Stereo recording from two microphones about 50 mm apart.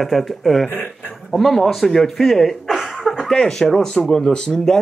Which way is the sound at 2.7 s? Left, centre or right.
Centre.